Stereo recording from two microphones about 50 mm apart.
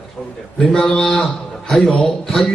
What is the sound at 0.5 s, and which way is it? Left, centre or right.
A man's voice, centre.